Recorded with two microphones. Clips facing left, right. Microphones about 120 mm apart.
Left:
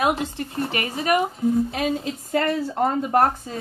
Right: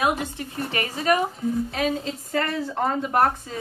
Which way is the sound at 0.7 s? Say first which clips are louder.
Right 1 dB; 25° left (ahead or behind).